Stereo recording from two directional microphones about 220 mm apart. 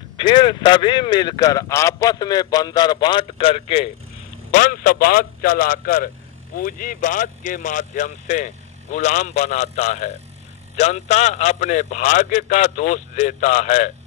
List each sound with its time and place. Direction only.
0.2 s a man's voice: 20° left (ahead or behind)
4.5 s a man's voice: 35° left (ahead or behind)